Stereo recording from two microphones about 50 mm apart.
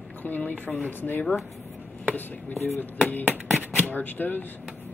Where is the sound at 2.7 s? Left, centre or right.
Left.